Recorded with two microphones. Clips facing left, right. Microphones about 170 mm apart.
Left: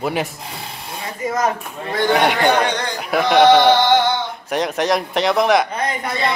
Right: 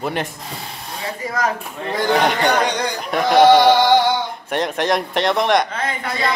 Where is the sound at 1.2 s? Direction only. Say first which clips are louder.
Left 3 dB; 20° left (ahead or behind).